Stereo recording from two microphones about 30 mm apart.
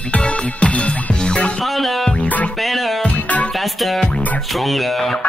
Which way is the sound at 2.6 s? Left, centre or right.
Centre.